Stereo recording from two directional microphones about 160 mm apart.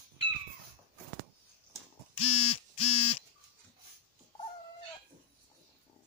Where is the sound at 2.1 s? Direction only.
35° left (ahead or behind).